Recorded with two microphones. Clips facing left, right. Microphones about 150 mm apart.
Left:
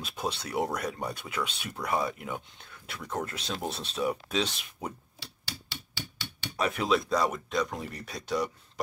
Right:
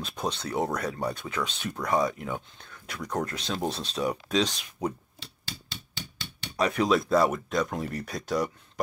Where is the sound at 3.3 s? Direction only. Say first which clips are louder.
Right 4 dB; 35° right (ahead or behind).